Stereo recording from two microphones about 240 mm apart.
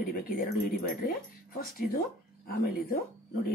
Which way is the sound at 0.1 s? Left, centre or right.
Left.